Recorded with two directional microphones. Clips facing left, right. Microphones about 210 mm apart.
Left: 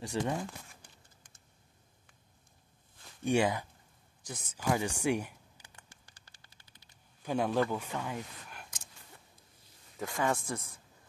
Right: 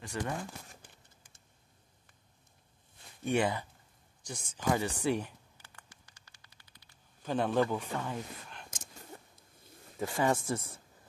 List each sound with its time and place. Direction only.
0.0 s speech: 15° left (ahead or behind)
3.3 s speech: 15° left (ahead or behind)
4.3 s a sound: 5° left (ahead or behind); by 7.0 s 25° left (ahead or behind)
7.2 s speech: 10° left (ahead or behind)
8.6 s a sound: 45° right (ahead or behind)
9.9 s speech: 10° right (ahead or behind)
10.3 s speech: centre (ahead or behind)